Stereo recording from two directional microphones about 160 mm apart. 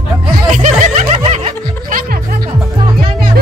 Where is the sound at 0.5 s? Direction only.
50° right (ahead or behind).